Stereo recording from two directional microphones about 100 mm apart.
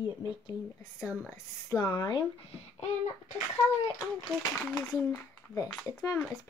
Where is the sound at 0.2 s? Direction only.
35° left (ahead or behind).